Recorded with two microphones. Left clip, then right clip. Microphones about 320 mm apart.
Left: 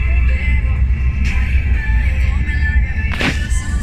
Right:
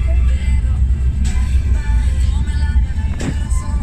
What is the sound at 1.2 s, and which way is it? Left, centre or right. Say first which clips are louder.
Music: left 8 dB; left.